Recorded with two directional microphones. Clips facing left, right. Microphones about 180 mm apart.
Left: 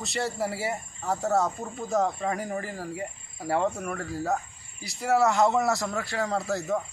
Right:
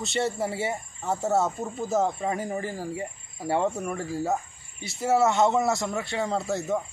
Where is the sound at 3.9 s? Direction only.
25° right (ahead or behind).